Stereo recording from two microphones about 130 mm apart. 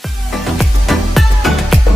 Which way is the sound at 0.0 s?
Centre (ahead or behind).